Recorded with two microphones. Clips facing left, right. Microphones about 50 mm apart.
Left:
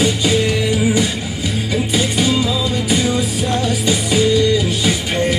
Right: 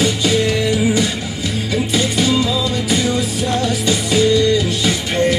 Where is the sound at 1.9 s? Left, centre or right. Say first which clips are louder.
Right 1 dB; centre.